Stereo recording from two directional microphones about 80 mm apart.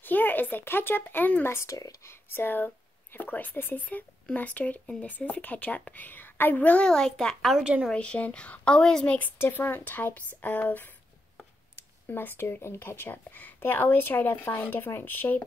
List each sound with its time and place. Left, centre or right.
0.0 s speech: left
2.2 s speech: left
6.9 s a woman's voice: centre
9.4 s speech: left
12.1 s speech: left